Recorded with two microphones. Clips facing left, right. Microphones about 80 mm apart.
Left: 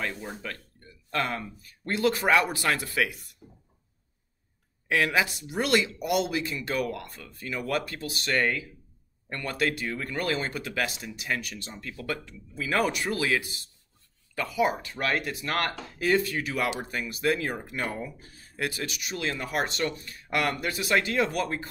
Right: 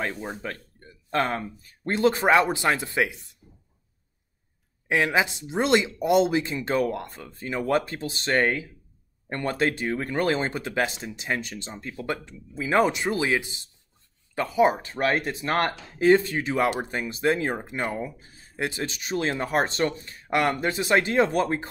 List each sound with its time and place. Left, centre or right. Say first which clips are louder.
0.0 s speech: right 3 dB; right
4.8 s speech: right 2 dB; right